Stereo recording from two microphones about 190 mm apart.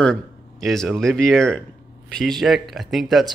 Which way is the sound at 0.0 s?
Centre (ahead or behind).